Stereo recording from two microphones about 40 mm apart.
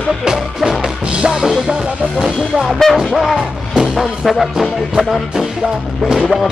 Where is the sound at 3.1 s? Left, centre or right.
Centre.